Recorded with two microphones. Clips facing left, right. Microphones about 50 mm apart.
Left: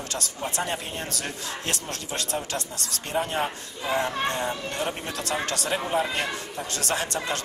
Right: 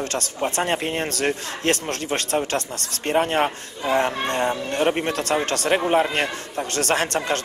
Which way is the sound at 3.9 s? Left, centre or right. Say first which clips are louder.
Right 5 dB; right.